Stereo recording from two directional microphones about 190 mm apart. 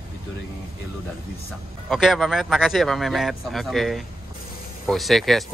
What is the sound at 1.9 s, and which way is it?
Speech, centre (ahead or behind).